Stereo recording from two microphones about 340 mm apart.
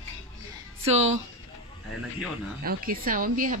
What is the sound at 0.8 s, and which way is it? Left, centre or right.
Speech, centre.